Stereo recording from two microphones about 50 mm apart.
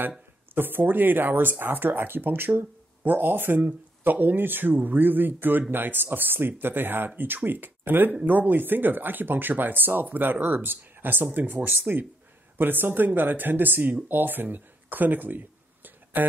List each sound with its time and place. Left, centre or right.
0.6 s speech: right